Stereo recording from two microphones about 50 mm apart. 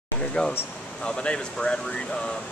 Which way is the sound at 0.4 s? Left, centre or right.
Left.